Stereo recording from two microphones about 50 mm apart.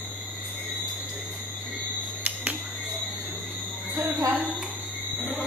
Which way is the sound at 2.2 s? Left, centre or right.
Right.